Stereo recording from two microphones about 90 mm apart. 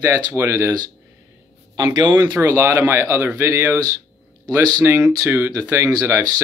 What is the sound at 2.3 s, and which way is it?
Speech, 25° right (ahead or behind).